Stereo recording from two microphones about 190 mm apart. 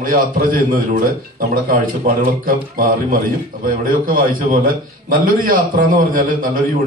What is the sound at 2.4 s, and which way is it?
A man's voice, 50° right (ahead or behind).